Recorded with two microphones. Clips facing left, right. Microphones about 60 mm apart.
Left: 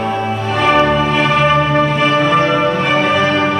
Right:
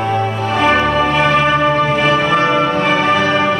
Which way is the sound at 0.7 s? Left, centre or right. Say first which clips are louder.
Left 1 dB; centre.